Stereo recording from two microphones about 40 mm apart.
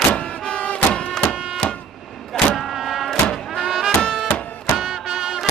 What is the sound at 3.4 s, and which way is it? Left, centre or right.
Music, centre.